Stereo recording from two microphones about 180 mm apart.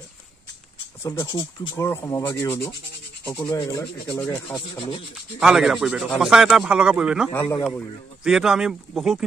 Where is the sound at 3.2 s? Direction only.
20° left (ahead or behind).